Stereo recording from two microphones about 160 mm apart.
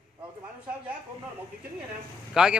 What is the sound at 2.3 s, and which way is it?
Speech, 5° right (ahead or behind).